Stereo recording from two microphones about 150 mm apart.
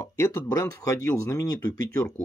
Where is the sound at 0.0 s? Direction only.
20° left (ahead or behind).